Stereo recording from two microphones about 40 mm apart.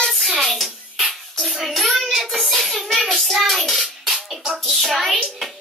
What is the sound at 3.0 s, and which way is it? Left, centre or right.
Hands, centre.